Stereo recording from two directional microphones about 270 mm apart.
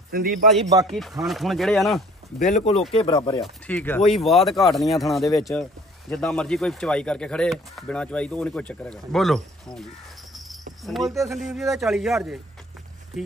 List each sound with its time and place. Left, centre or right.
0.1 s a man's voice: right
0.8 s speech: centre
2.3 s speech: left
2.9 s chopping: centre
3.4 s speech: centre
10.3 s cricket: centre
11.4 s speech: centre